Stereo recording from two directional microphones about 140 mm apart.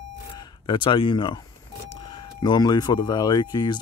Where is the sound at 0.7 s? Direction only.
35° left (ahead or behind).